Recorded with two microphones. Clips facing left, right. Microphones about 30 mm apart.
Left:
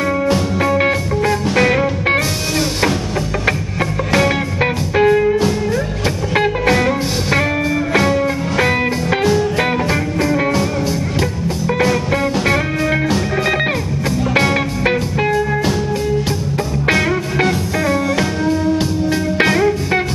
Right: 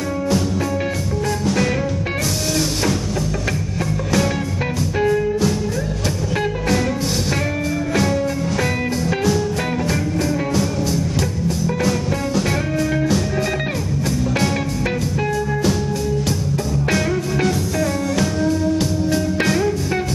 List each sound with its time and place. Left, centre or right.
0.3 s music: left
4.9 s music: left
7.9 s music: left
14.3 s music: left
16.9 s music: left